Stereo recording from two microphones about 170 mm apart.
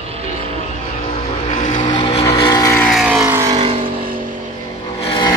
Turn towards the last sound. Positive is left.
turn(degrees=25)  # may be behind; listen again after turning